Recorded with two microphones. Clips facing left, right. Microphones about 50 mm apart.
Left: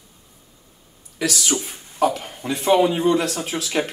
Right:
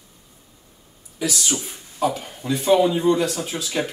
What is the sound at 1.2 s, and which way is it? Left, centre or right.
Speech, left.